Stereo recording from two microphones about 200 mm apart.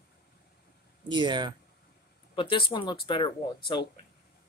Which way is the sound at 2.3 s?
25° left (ahead or behind).